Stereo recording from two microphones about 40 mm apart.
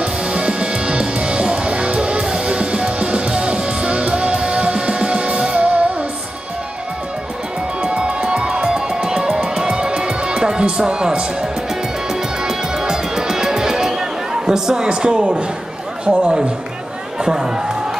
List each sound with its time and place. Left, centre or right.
0.0 s music: right
7.9 s music: right
14.9 s a man's voice: right